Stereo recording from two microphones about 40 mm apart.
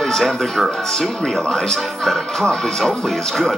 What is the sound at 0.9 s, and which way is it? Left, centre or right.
Speech, centre.